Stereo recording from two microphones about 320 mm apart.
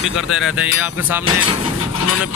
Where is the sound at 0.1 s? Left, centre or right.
Centre.